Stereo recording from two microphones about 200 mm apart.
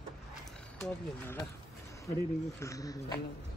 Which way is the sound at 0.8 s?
10° left (ahead or behind).